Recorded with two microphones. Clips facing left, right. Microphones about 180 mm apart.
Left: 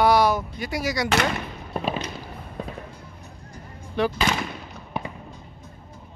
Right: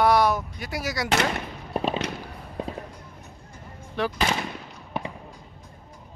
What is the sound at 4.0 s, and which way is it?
Speech, centre (ahead or behind).